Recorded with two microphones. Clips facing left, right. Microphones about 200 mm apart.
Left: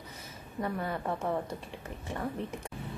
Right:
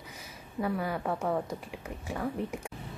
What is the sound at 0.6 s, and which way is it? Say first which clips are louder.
Speech: right 2 dB; 5° right (ahead or behind).